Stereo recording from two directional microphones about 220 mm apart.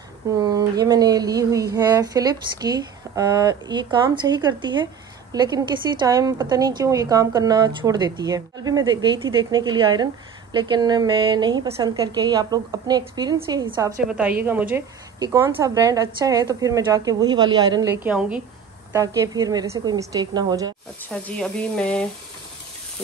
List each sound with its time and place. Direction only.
0.4 s a woman's voice: 20° right (ahead or behind)
21.1 s speech: 5° left (ahead or behind)